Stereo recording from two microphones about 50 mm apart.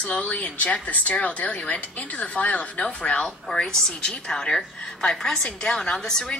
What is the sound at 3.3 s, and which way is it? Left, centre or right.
A woman's voice, centre.